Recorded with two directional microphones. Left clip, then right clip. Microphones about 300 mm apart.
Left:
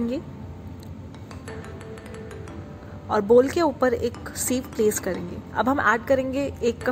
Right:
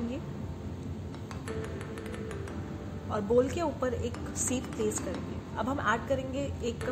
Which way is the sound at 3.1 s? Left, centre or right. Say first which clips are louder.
Left 10 dB; left.